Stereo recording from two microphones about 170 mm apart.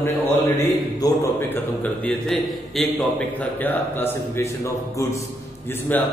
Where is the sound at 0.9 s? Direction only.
20° left (ahead or behind).